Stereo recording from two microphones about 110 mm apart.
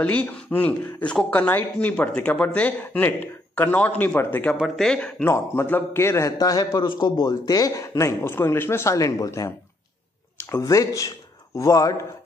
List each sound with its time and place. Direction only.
0.0 s speech: 15° left (ahead or behind)
4.6 s speech: centre (ahead or behind)
5.2 s a man's voice: 20° left (ahead or behind)
10.5 s speech: 30° left (ahead or behind)